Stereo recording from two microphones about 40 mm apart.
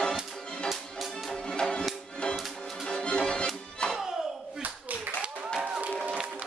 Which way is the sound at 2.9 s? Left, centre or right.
Left.